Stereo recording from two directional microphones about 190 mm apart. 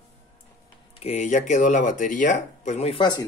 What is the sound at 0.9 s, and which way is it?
Speech, 35° left (ahead or behind).